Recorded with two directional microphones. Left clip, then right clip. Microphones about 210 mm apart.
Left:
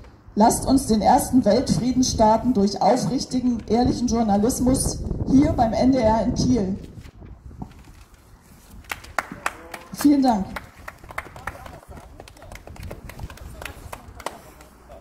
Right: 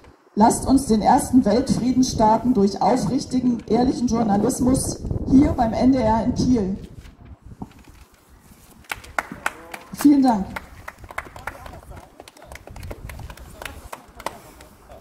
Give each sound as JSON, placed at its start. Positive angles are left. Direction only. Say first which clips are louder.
{"t": 0.4, "sound": "a woman's voice", "louder": "right 1 dB", "side_deg": 40}
{"t": 8.8, "sound": "clapping", "louder": "right 1 dB", "side_deg": 10}
{"t": 10.0, "sound": "a woman's voice", "louder": "right 2 dB", "side_deg": 40}
{"t": 12.2, "sound": "clip-clop", "louder": "right 2 dB", "side_deg": 0}
{"t": 13.6, "sound": "run", "louder": "right 1 dB", "side_deg": -10}